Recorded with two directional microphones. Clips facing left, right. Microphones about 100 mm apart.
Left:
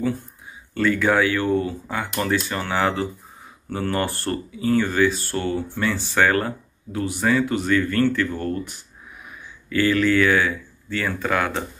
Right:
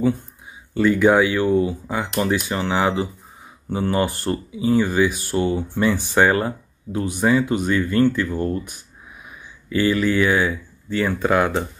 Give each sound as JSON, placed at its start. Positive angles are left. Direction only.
{"t": 0.7, "sound": "speech", "side_deg": -20}